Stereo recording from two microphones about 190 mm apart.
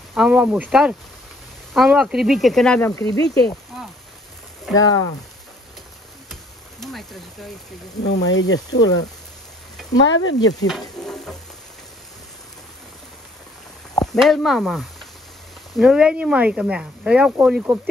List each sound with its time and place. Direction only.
0.1 s speech: 5° right (ahead or behind)
3.1 s speech: 60° left (ahead or behind)
4.7 s speech: centre (ahead or behind)
6.8 s speech: centre (ahead or behind)
8.0 s speech: 65° left (ahead or behind); by 8.5 s 80° left
8.6 s speech: 70° left (ahead or behind)
10.0 s speech: 75° left (ahead or behind)
10.7 s speech: centre (ahead or behind)
14.1 s speech: centre (ahead or behind)